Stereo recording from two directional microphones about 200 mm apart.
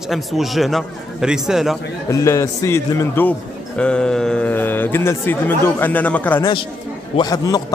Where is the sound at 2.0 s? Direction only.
15° left (ahead or behind).